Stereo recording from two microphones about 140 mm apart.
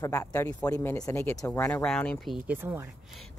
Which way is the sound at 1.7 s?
5° left (ahead or behind).